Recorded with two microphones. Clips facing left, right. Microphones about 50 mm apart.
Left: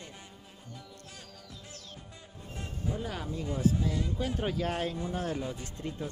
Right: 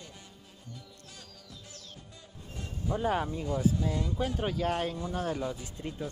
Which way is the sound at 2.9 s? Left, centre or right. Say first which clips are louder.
Right 11 dB; right.